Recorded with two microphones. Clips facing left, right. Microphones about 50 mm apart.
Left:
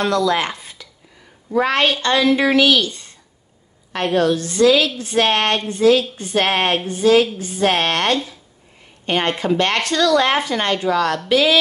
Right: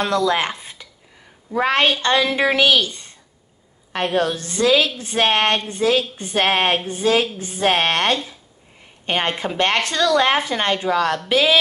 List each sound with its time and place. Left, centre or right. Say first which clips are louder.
0.0 s speech: left 1 dB; centre